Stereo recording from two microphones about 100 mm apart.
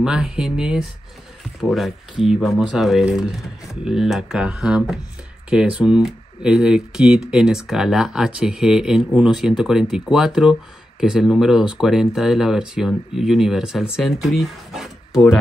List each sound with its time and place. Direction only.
0.0 s speech: 5° right (ahead or behind)